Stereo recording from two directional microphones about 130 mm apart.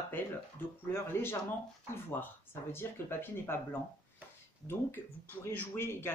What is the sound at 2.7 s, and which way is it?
Speech, 15° left (ahead or behind).